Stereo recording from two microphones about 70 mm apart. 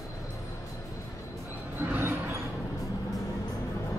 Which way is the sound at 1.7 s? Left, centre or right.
Right.